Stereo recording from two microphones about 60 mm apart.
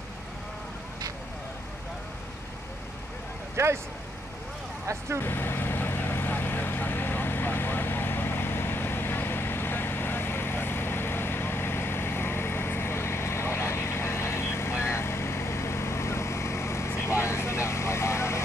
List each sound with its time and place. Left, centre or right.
3.5 s speech: right
5.2 s vehicle: left